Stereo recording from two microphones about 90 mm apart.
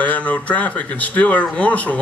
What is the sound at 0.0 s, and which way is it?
Speech, 15° left (ahead or behind).